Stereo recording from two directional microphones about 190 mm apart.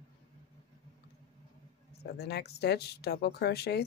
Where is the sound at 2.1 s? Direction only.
55° left (ahead or behind).